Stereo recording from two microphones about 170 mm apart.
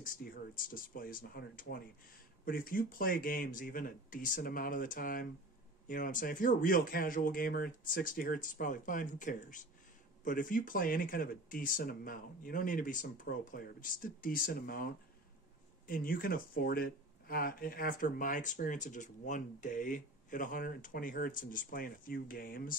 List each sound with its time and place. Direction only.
0.0 s speech: 55° left (ahead or behind)
15.9 s speech: 55° left (ahead or behind)